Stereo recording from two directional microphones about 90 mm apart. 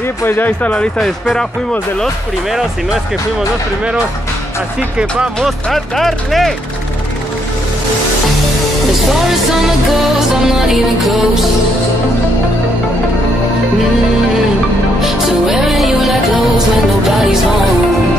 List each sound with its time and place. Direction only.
0.2 s speech: 25° left (ahead or behind); by 2.0 s 5° left (ahead or behind)
2.5 s speech: 5° right (ahead or behind)
5.7 s speech: centre (ahead or behind)
10.7 s speech: centre (ahead or behind)
15.0 s music: 5° right (ahead or behind)